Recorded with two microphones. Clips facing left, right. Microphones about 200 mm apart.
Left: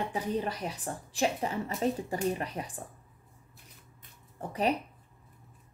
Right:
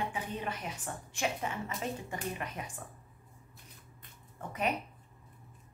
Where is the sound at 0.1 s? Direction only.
40° left (ahead or behind).